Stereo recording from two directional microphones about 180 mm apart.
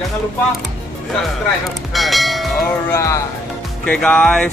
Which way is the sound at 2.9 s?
20° left (ahead or behind).